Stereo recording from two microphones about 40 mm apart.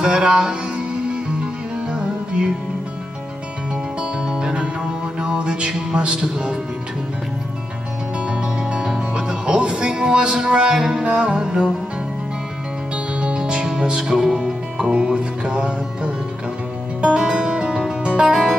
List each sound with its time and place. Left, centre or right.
0.0 s music: right
4.0 s music: right
8.3 s music: right
12.9 s music: right